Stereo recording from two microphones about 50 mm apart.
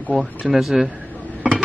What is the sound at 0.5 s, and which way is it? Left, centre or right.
Speech, centre.